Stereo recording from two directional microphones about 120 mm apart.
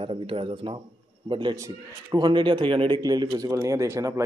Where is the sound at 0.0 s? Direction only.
45° right (ahead or behind).